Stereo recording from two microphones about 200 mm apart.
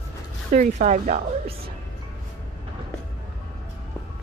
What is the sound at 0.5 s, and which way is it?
Speech, 40° right (ahead or behind).